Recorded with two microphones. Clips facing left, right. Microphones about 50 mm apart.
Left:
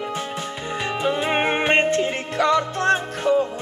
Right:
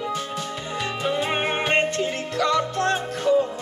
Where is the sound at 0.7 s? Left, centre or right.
Left.